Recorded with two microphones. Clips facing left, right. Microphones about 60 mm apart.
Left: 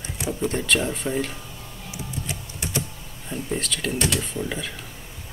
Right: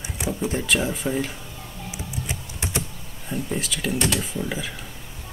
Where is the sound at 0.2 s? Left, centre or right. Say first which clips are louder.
Even; centre.